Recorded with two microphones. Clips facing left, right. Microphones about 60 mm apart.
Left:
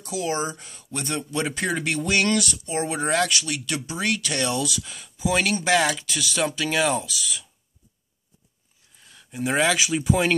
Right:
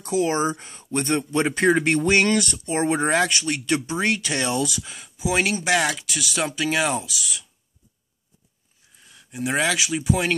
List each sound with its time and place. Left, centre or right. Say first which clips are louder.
0.0 s speech: right 5 dB; right; by 7.4 s centre
9.0 s speech: even; centre